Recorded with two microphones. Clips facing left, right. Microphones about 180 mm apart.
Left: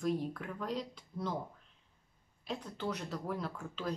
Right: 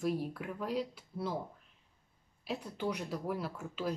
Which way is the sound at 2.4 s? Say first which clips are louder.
Right 2 dB; 10° right (ahead or behind).